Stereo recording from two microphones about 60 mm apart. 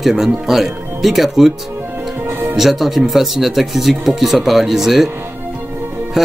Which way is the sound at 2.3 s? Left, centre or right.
Right.